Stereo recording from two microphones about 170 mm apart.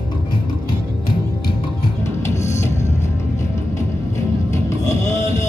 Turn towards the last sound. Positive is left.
turn(degrees=15)  # may be behind; listen again after turning